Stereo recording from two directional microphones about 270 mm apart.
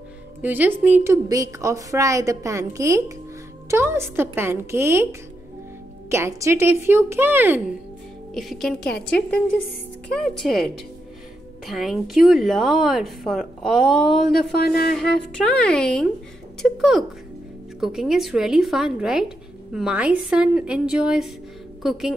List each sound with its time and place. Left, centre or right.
0.4 s a woman's voice: centre
6.0 s a woman's voice: centre
10.4 s speech: centre
14.6 s speech: left
15.0 s speech: centre